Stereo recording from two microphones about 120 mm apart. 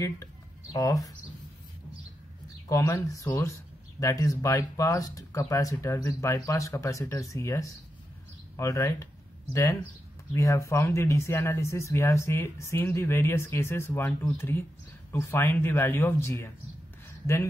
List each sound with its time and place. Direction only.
0.7 s speech: 30° left (ahead or behind)
2.7 s speech: 25° left (ahead or behind)